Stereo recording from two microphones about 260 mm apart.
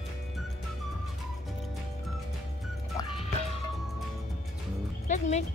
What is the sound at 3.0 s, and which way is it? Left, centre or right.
Music, centre.